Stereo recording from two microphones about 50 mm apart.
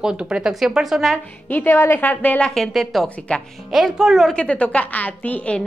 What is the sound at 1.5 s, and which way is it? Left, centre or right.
Speech, left.